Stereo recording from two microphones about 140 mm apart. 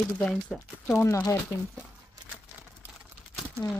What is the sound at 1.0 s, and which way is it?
Speech, 20° left (ahead or behind).